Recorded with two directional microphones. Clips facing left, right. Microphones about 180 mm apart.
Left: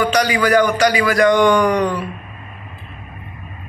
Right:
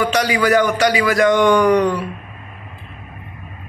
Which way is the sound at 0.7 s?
25° right (ahead or behind).